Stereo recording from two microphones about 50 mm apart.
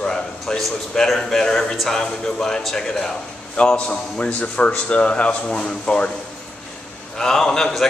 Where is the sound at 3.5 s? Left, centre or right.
Left.